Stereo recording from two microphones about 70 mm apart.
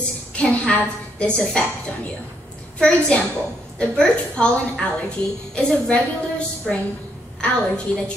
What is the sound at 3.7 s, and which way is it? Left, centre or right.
A woman's voice, centre.